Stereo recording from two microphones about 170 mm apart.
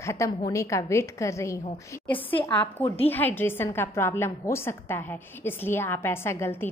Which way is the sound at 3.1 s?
10° left (ahead or behind).